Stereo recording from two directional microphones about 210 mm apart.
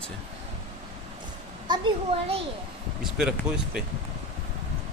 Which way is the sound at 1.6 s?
20° right (ahead or behind).